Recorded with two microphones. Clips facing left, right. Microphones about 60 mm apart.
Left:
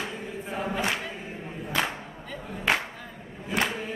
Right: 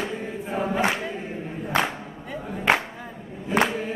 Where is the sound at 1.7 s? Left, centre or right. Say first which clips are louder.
Right 4 dB; right.